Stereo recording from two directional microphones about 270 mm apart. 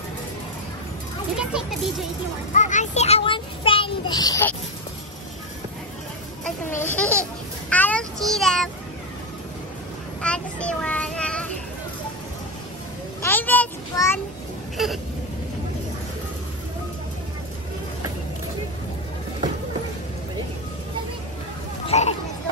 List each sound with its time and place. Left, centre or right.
1.4 s a child's voice: centre
2.5 s a child's voice: left; by 4.6 s centre
6.4 s a child's voice: centre
10.2 s a child's voice: centre
13.2 s a child's voice: centre
21.8 s hubbub: left